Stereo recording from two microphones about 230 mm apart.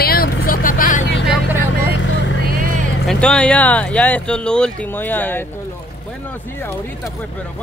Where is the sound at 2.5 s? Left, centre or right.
Right.